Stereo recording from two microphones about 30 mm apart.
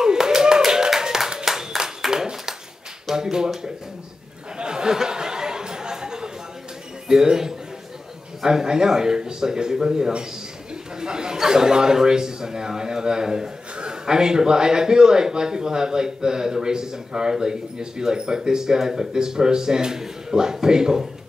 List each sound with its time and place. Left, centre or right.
0.0 s clapping: right
2.0 s a sound: centre
3.2 s a man's voice: right
4.6 s chatter: right
7.1 s a man's voice: right